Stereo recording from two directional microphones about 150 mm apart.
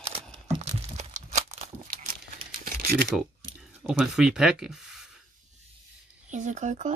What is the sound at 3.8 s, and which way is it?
Speech, 5° right (ahead or behind).